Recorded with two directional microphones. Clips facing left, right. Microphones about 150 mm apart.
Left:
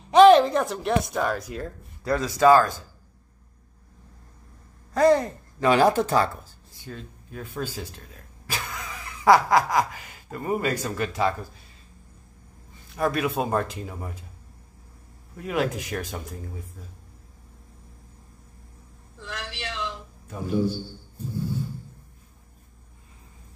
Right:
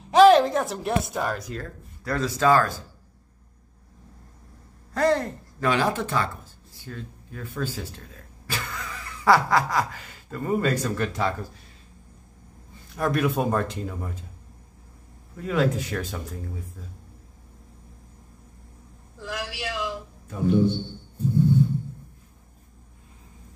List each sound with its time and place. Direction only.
0.1 s a woman's voice: centre (ahead or behind)
1.5 s speech: 15° left (ahead or behind)
4.9 s speech: 15° left (ahead or behind)
5.7 s speech: 40° left (ahead or behind)
6.9 s speech: 20° left (ahead or behind)
8.5 s snicker: 10° left (ahead or behind)
12.9 s speech: 5° left (ahead or behind)
15.4 s speech: 10° left (ahead or behind)
19.2 s a man's voice: 10° right (ahead or behind)
20.6 s a man's voice: 25° right (ahead or behind)